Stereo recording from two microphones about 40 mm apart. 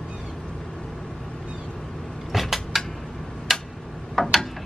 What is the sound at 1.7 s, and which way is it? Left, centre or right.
Vehicle, centre.